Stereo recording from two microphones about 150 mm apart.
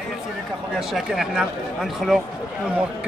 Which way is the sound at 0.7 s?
Centre (ahead or behind).